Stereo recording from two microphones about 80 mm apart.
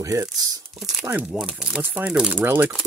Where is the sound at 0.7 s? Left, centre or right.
Centre.